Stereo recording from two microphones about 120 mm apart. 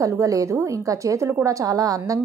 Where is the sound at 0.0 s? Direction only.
25° right (ahead or behind).